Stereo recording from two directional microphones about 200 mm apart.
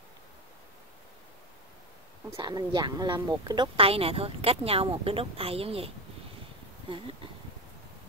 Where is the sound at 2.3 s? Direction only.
20° right (ahead or behind).